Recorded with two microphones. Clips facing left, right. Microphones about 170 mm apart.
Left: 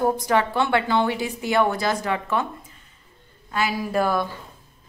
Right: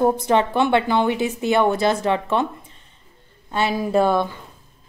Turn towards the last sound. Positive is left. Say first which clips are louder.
# right 4 dB
turn(degrees=-25)  # may be behind; listen again after turning